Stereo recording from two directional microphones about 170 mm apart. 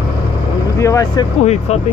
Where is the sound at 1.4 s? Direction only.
40° left (ahead or behind).